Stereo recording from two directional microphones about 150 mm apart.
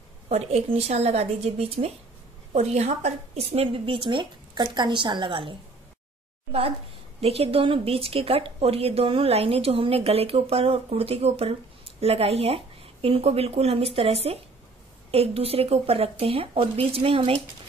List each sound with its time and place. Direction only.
0.3 s speech: 45° right (ahead or behind)
7.2 s speech: 40° right (ahead or behind)